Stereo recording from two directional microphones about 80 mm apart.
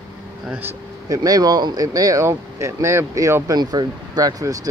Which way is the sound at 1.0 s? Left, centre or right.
Right.